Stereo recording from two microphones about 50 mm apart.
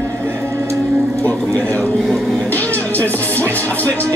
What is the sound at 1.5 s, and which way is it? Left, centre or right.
Speech, left.